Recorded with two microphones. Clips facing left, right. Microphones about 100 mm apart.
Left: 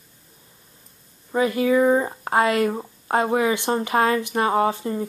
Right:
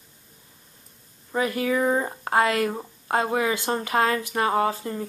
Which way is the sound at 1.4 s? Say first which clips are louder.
Left 5 dB; 25° left (ahead or behind).